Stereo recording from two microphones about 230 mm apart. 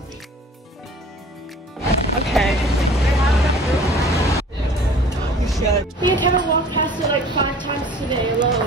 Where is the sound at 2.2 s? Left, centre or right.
Centre.